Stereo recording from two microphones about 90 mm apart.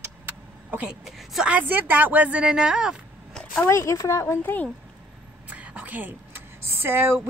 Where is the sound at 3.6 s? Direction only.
30° left (ahead or behind).